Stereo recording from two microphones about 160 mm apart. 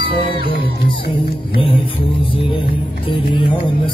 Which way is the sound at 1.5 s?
35° left (ahead or behind).